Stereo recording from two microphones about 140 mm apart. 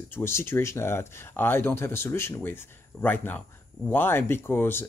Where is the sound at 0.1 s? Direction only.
20° left (ahead or behind).